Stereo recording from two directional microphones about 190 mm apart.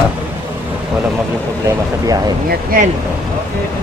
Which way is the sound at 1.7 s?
20° right (ahead or behind).